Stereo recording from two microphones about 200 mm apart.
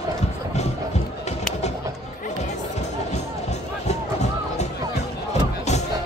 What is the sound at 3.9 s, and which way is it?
Music, 35° left (ahead or behind).